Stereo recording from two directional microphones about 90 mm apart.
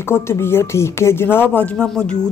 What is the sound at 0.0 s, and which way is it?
Speech, 30° left (ahead or behind).